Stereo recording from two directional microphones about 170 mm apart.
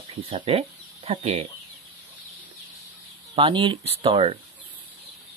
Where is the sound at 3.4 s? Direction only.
30° right (ahead or behind).